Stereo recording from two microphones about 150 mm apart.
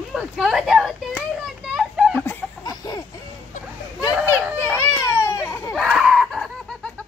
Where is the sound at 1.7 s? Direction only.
5° right (ahead or behind).